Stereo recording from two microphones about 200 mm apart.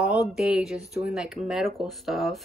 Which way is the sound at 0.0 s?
5° right (ahead or behind).